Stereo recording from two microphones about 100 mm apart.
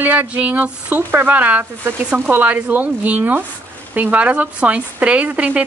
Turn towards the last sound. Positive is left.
turn(degrees=-15)  # may be behind; listen again after turning